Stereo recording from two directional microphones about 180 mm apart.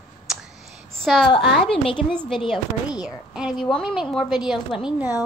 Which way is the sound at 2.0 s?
5° left (ahead or behind).